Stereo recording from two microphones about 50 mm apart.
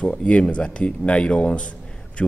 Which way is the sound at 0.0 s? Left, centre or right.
Left.